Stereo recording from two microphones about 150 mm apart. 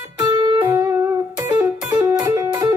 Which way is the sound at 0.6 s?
20° right (ahead or behind).